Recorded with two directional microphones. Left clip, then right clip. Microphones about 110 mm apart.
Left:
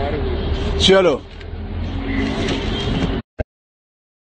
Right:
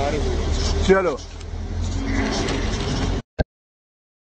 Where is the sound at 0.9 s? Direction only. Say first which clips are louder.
Left 4 dB; 25° left (ahead or behind).